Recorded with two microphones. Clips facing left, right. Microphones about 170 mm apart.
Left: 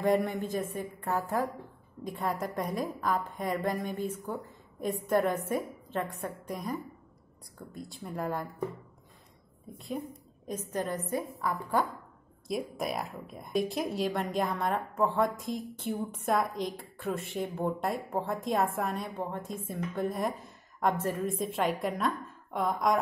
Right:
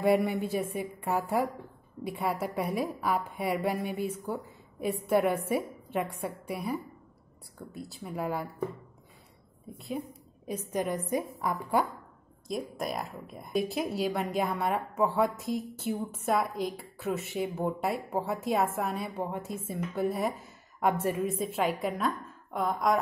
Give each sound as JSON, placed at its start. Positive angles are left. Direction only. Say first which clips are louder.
{"t": 0.0, "sound": "a woman's voice", "louder": "right 2 dB", "side_deg": -10}
{"t": 9.8, "sound": "a woman's voice", "louder": "right 1 dB", "side_deg": 0}
{"t": 12.4, "sound": "a woman's voice", "louder": "left 1 dB", "side_deg": 0}
{"t": 21.4, "sound": "a woman's voice", "louder": "right 1 dB", "side_deg": 0}